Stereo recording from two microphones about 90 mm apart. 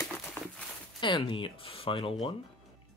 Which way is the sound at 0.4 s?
25° left (ahead or behind).